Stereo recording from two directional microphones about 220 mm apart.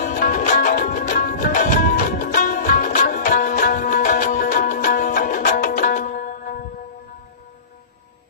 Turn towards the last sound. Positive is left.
turn(degrees=40)  # may be behind; listen again after turning